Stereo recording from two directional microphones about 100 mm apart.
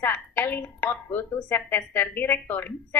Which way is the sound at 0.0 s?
20° left (ahead or behind).